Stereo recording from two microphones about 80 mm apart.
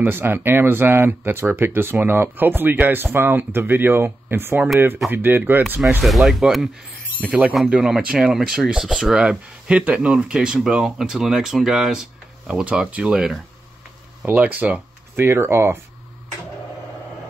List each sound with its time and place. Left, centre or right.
0.0 s speech: right
6.0 s speech: centre
7.2 s speech: centre
14.2 s speech: centre